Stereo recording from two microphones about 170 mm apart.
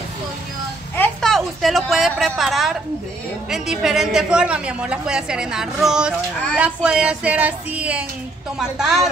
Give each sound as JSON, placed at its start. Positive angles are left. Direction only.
{"t": 0.9, "sound": "a woman's voice", "side_deg": 5}
{"t": 6.5, "sound": "child singing", "side_deg": -5}
{"t": 8.5, "sound": "a woman's voice", "side_deg": 0}